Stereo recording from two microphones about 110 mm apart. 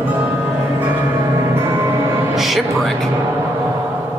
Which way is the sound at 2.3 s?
Centre (ahead or behind).